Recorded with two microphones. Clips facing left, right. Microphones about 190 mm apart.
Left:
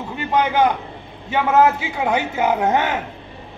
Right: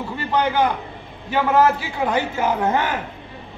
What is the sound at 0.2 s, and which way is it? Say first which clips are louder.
A man's voice: left 2 dB; 20° left (ahead or behind).